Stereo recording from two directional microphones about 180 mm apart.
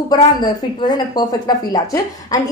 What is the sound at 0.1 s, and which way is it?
A woman's voice, 20° left (ahead or behind).